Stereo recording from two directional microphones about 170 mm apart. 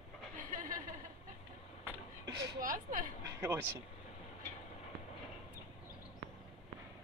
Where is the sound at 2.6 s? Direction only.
55° right (ahead or behind).